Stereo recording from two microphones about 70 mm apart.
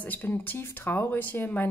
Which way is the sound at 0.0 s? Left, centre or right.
Left.